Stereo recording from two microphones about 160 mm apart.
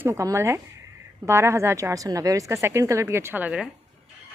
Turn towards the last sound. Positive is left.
turn(degrees=-10)  # may be behind; listen again after turning